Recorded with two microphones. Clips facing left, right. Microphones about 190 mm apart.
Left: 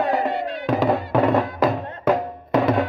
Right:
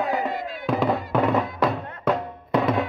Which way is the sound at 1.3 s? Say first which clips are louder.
Left 3 dB; centre (ahead or behind).